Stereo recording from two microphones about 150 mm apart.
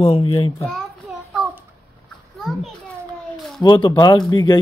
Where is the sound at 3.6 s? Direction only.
30° left (ahead or behind).